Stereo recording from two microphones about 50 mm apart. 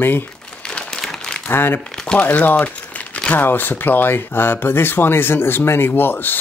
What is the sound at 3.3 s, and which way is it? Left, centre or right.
Speech, left.